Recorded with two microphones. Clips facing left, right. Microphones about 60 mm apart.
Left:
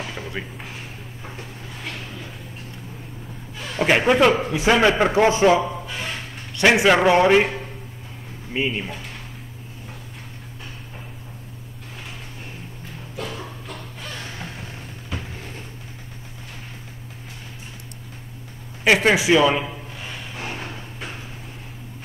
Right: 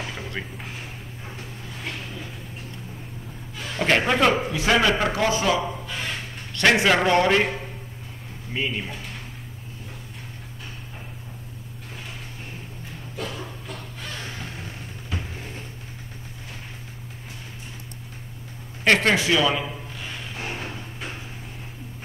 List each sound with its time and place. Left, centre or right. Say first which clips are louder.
0.0 s a sound: left 2 dB; centre
3.7 s a man's voice: left 4 dB; centre
4.5 s a man's voice: left 3 dB; centre
6.5 s a man's voice: left 3 dB; centre
8.5 s a man's voice: left 3 dB; centre
18.9 s speech: left 3 dB; centre